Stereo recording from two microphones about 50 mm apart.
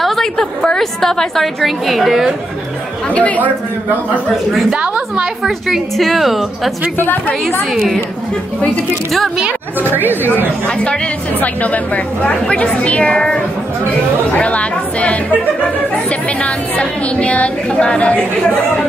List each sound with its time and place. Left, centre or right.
0.0 s a woman's voice: centre
3.1 s speech: left
4.7 s a woman's voice: right
5.7 s a woman's voice: centre
7.7 s a woman's voice: centre
11.3 s speech: left